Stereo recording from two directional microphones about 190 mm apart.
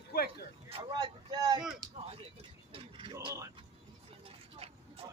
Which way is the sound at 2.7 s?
25° right (ahead or behind).